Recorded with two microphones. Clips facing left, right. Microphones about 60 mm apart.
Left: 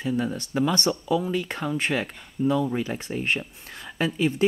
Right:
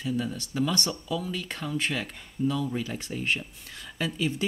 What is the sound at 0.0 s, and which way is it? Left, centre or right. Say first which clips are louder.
Speech: left 4 dB; left.